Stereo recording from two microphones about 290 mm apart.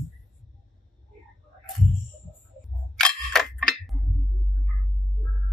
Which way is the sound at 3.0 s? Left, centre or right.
Centre.